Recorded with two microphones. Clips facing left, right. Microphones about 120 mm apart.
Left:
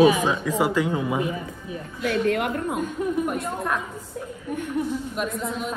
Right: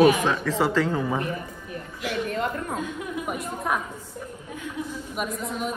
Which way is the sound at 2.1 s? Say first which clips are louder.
Left 5 dB; 65° left (ahead or behind).